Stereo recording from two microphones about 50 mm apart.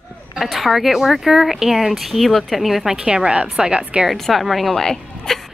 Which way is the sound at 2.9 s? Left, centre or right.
Centre.